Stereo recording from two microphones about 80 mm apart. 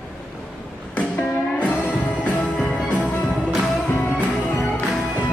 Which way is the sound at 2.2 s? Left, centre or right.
Centre.